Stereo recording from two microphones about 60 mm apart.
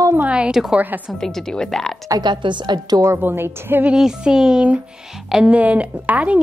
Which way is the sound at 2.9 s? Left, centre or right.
Right.